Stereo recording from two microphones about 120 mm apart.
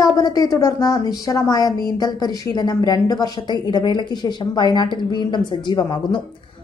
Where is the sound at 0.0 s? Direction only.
30° left (ahead or behind).